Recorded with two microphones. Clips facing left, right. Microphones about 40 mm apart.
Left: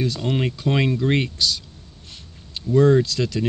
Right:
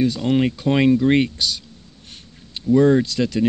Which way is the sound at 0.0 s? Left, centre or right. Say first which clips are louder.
Right 5 dB; centre.